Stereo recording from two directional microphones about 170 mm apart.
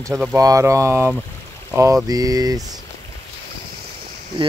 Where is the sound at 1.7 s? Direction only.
15° right (ahead or behind).